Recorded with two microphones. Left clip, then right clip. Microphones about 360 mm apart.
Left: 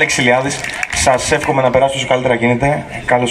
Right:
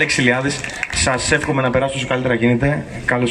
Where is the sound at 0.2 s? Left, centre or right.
Centre.